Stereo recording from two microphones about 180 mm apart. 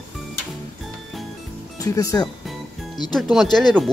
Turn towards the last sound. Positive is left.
turn(degrees=0)  # may be behind; listen again after turning